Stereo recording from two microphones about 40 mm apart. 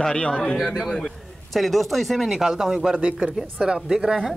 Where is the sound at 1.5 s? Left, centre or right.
Centre.